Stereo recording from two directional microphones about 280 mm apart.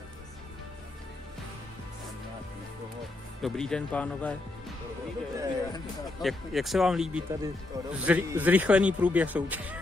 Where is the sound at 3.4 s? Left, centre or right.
Centre.